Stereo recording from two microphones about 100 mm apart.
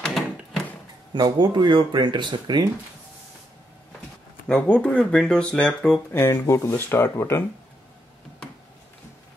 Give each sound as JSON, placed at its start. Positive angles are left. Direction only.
{"t": 0.0, "sound": "a sound", "side_deg": 0}
{"t": 1.1, "sound": "speech", "side_deg": -45}
{"t": 4.5, "sound": "speech", "side_deg": 15}
{"t": 6.1, "sound": "speech", "side_deg": 25}